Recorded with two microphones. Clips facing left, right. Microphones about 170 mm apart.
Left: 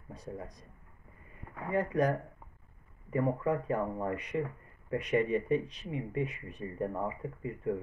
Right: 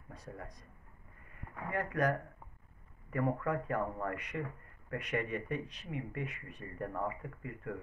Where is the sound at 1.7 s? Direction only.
25° left (ahead or behind).